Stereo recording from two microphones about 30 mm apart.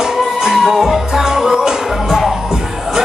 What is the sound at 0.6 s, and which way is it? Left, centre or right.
Music, centre.